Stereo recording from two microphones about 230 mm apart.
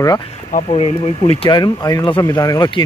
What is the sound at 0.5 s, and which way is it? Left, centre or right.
Speech, left.